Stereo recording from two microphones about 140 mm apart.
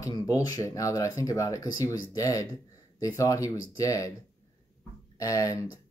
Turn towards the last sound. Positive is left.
turn(degrees=25)  # may be behind; listen again after turning